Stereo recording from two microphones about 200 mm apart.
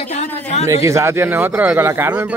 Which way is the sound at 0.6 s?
15° right (ahead or behind).